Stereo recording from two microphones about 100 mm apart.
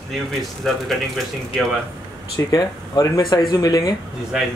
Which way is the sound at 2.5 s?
40° left (ahead or behind).